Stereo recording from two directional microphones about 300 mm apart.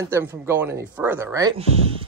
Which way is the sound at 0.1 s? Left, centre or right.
Centre.